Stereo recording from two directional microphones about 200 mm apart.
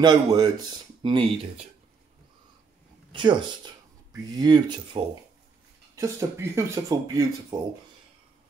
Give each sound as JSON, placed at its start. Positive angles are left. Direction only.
{"t": 0.0, "sound": "speech", "side_deg": -20}
{"t": 3.1, "sound": "speech", "side_deg": -25}